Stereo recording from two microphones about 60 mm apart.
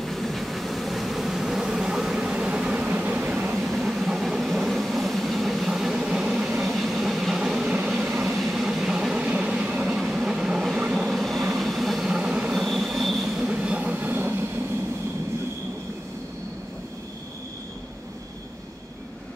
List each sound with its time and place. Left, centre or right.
0.0 s vehicle: centre
2.9 s vehicle: right
3.5 s vehicle: centre
5.7 s train: centre
6.6 s train: centre
8.2 s vehicle: centre
9.8 s train: centre
11.1 s vehicle: centre
12.1 s train: centre
12.5 s train wheels squealing: centre
13.3 s train: centre; by 14.4 s right